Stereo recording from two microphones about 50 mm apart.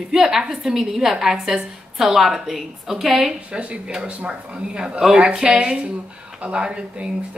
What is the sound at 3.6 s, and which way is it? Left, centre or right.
Speech, right.